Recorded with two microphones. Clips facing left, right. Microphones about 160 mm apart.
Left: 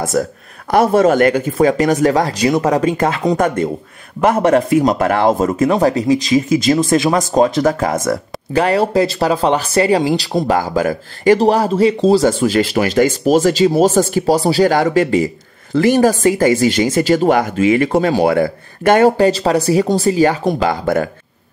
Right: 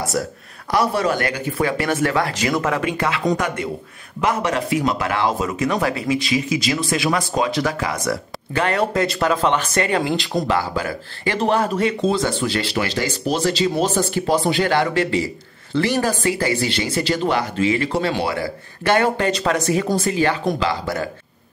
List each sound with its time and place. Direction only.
0.2 s speech: 50° left (ahead or behind)
5.7 s speech: 40° left (ahead or behind)
20.5 s speech: 50° left (ahead or behind)